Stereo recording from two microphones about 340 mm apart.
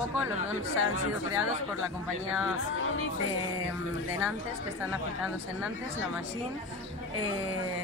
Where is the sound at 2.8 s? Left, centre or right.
Left.